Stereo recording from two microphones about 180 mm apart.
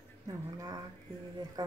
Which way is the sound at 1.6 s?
20° right (ahead or behind).